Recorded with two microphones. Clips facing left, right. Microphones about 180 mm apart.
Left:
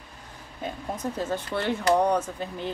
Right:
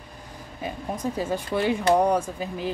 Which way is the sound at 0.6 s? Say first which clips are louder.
Right 2 dB; 10° right (ahead or behind).